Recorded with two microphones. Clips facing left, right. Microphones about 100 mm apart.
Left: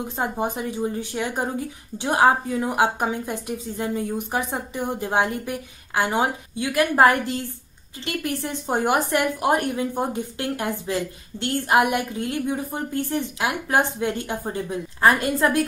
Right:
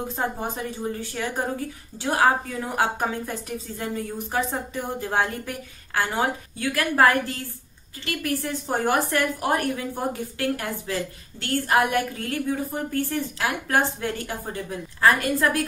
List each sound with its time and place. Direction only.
0.2 s a woman's voice: 15° left (ahead or behind)